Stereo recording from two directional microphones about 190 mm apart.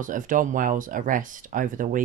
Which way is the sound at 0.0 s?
45° right (ahead or behind).